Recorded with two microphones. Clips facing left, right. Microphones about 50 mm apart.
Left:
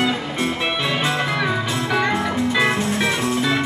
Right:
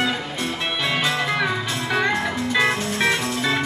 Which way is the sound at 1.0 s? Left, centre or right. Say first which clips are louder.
Left 1 dB; left.